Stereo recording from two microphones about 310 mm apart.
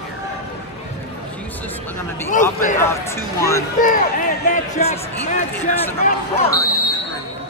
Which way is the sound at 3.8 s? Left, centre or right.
Left.